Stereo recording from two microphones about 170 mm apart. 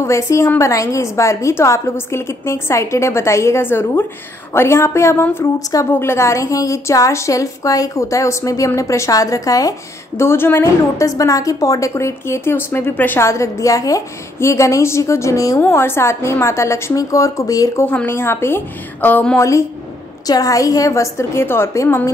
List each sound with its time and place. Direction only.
0.0 s a woman's voice: 15° left (ahead or behind)